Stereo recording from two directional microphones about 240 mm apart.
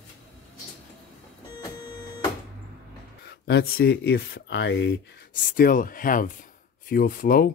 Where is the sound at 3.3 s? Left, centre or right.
Left.